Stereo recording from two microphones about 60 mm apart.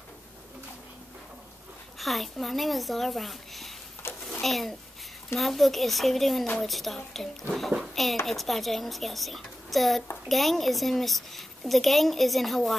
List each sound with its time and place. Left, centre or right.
2.0 s a child's voice: centre
4.0 s a sound: left
4.4 s a child's voice: centre